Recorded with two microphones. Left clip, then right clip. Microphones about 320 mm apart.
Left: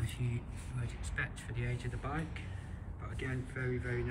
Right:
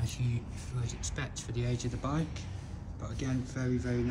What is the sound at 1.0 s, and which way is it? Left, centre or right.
Speech, centre.